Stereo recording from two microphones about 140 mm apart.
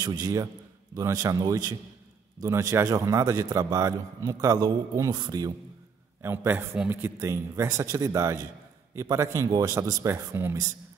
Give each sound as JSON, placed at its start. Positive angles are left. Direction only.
{"t": 0.0, "sound": "a man's voice", "side_deg": -25}
{"t": 6.2, "sound": "a man's voice", "side_deg": -15}